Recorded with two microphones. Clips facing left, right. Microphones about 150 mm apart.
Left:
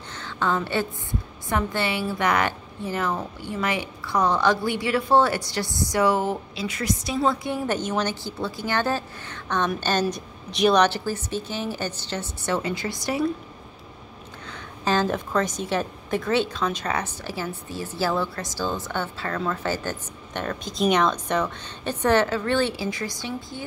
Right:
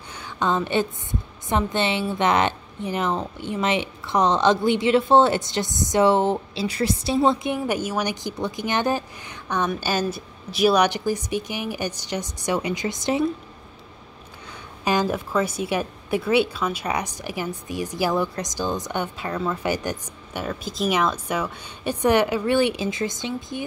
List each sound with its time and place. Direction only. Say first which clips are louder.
0.1 s a sound: right 2 dB; 15° right (ahead or behind)
1.5 s a woman's voice: right 2 dB; 20° right (ahead or behind)
7.2 s a woman's voice: right 4 dB; 20° right (ahead or behind)
14.5 s a woman's voice: right 1 dB; 10° right (ahead or behind)